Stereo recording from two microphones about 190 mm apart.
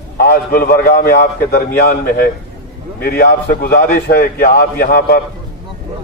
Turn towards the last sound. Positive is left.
turn(degrees=50)  # may be behind; listen again after turning